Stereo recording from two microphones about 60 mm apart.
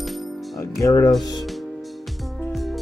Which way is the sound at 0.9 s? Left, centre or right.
Left.